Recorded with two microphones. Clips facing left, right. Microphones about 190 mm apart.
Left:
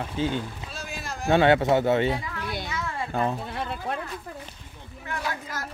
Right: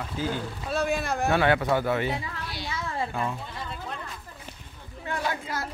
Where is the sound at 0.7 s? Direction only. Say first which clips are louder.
Right 10 dB; 60° right (ahead or behind).